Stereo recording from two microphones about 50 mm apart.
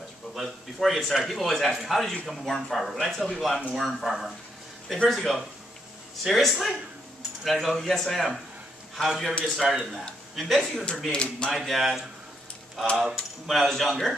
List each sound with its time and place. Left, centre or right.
0.4 s a man's voice: centre
11.1 s speech: centre
11.5 s a man's voice: centre